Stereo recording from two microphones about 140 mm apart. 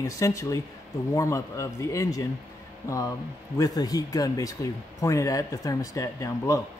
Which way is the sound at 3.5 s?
25° left (ahead or behind).